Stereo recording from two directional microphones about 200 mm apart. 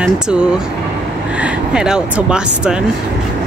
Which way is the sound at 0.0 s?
5° right (ahead or behind).